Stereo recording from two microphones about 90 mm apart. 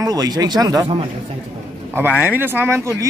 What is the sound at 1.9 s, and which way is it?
Speech, 20° right (ahead or behind).